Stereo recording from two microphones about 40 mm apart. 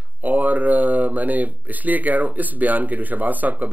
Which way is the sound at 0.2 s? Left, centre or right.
Right.